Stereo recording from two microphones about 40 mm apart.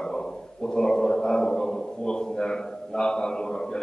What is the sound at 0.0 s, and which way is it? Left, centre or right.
A man's voice, centre.